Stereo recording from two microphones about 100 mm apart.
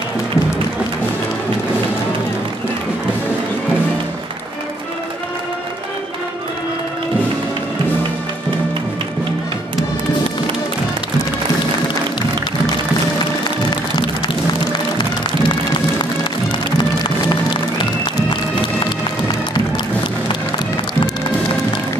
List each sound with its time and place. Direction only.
15.4 s music: 50° left (ahead or behind)